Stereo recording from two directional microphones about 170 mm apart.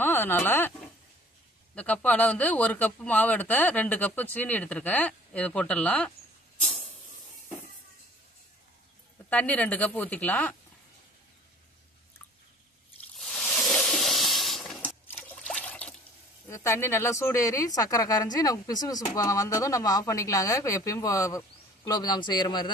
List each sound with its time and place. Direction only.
0.0 s speech: 10° left (ahead or behind)
1.8 s a man's voice: 5° left (ahead or behind)
6.6 s hiss: 10° left (ahead or behind)
9.3 s a man's voice: 10° left (ahead or behind)
13.2 s a sound: 5° left (ahead or behind)
15.2 s trickle: 5° left (ahead or behind)
16.4 s speech: 15° left (ahead or behind)